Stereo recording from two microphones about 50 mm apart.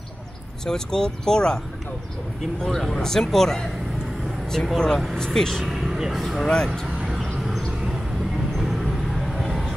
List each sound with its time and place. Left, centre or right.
0.7 s speech: centre
4.7 s speech: centre
5.7 s speech: centre
6.4 s speech: centre
8.5 s vehicle: centre